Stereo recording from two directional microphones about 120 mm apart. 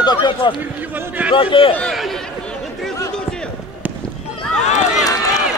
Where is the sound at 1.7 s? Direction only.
5° left (ahead or behind).